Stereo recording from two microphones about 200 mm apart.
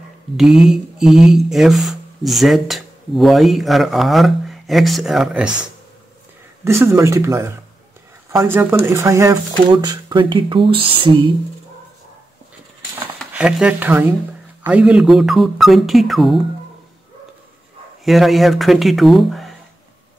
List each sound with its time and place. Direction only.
0.4 s speech: centre (ahead or behind)
6.6 s speech: 15° right (ahead or behind)
13.2 s speech: 5° right (ahead or behind)
18.0 s speech: centre (ahead or behind)